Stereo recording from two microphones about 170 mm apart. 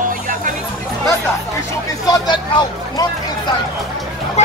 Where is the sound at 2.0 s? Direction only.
25° left (ahead or behind).